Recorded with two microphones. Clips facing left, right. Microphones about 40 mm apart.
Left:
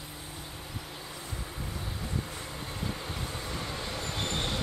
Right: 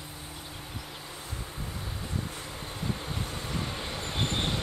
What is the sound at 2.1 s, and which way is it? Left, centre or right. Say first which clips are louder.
Vehicle: right 1 dB; centre.